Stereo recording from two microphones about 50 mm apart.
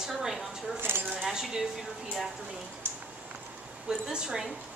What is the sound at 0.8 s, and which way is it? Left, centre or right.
Speech, right.